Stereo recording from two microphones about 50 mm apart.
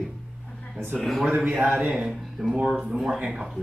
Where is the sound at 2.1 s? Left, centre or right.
Centre.